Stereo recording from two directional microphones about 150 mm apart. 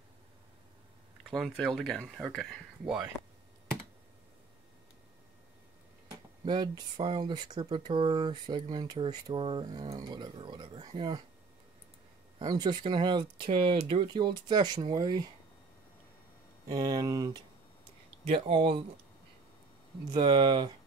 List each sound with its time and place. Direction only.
1.3 s speech: centre (ahead or behind)
6.4 s speech: 30° right (ahead or behind)
12.4 s speech: 30° right (ahead or behind)
16.6 s speech: 25° right (ahead or behind)
18.2 s speech: 35° right (ahead or behind)
20.1 s speech: 30° right (ahead or behind)